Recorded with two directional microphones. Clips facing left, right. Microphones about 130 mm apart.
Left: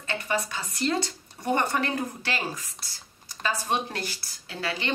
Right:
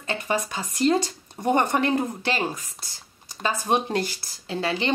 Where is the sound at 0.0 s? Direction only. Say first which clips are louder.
Right 3 dB; 20° right (ahead or behind).